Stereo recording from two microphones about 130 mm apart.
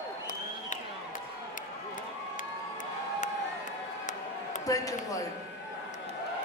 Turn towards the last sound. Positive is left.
turn(degrees=25)  # may be behind; listen again after turning